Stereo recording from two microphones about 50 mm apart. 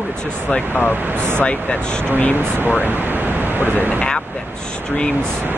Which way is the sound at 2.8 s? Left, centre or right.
Right.